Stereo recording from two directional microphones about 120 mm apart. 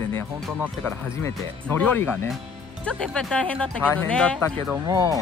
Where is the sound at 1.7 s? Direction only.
15° left (ahead or behind).